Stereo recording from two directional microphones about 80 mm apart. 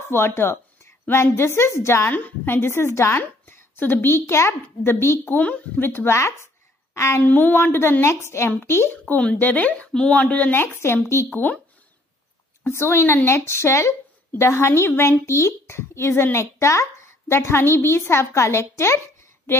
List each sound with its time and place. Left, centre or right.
0.1 s a woman's voice: left
7.2 s speech: left
8.9 s speech: centre
12.6 s a woman's voice: left